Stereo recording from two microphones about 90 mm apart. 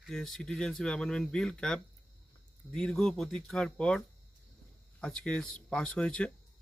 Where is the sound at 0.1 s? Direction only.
5° left (ahead or behind).